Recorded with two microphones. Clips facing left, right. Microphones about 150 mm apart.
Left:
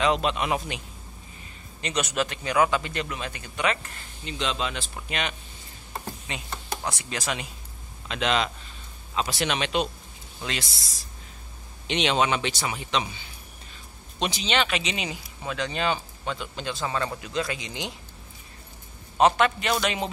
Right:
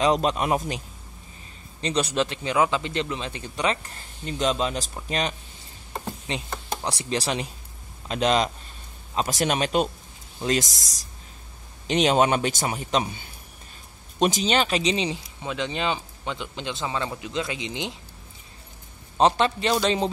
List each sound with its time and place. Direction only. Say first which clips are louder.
0.0 s a man's voice: right 2 dB; 40° right (ahead or behind)
1.8 s speech: right 3 dB; 30° right (ahead or behind)
4.3 s a man's voice: right 5 dB; 40° right (ahead or behind); by 17.9 s 20° right (ahead or behind)
19.1 s a man's voice: even; 30° right (ahead or behind)